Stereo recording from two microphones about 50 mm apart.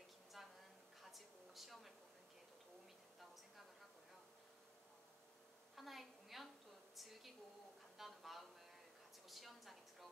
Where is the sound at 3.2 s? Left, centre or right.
Centre.